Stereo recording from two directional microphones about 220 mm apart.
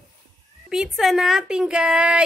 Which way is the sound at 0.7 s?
Centre (ahead or behind).